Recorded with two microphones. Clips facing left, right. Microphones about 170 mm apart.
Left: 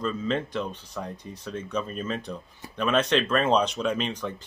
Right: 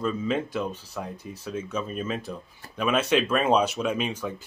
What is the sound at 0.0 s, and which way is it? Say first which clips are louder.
Speech: right 1 dB; 5° right (ahead or behind).